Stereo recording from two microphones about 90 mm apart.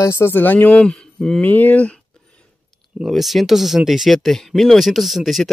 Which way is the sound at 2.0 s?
10° left (ahead or behind).